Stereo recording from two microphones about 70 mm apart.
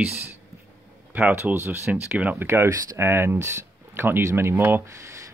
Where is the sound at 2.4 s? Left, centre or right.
Right.